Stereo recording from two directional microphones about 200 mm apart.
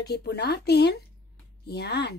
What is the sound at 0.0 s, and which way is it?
Speech, 55° left (ahead or behind).